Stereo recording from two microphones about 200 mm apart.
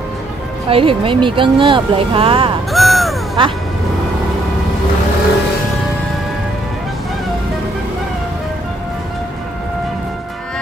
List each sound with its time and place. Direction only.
0.7 s speech: 25° right (ahead or behind)
2.7 s crow: centre (ahead or behind)
3.4 s speech: 25° right (ahead or behind)